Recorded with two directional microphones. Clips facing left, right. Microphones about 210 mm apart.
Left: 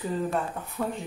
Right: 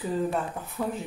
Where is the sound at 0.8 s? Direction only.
5° right (ahead or behind).